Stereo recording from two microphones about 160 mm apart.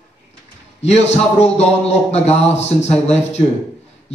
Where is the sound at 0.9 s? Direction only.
40° left (ahead or behind).